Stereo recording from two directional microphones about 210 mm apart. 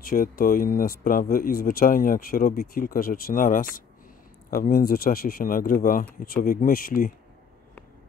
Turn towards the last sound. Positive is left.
turn(degrees=45)  # may be behind; listen again after turning